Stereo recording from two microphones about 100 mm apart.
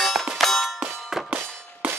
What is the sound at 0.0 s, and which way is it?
Clang, centre (ahead or behind).